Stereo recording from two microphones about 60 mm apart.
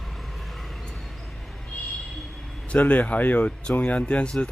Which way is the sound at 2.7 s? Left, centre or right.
Left.